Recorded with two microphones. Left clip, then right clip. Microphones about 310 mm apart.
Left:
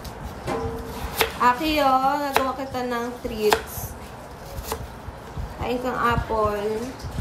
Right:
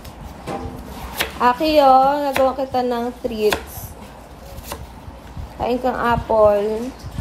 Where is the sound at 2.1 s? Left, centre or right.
Centre.